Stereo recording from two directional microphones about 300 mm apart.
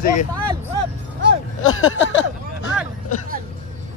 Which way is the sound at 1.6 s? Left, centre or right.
Left.